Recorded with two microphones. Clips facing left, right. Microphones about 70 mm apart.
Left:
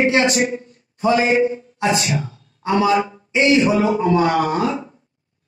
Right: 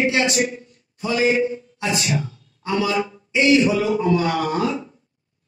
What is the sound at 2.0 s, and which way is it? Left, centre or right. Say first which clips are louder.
A man's voice: left 1 dB; left.